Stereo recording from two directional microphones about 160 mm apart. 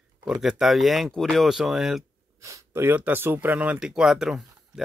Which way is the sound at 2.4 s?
20° right (ahead or behind).